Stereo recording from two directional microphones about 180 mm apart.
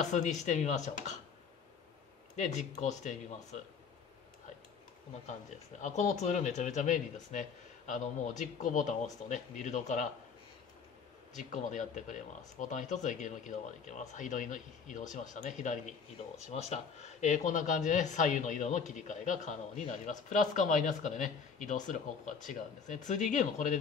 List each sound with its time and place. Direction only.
0.0 s speech: 40° left (ahead or behind)
2.3 s speech: 45° left (ahead or behind)
5.8 s speech: 40° left (ahead or behind)
11.3 s speech: 45° left (ahead or behind)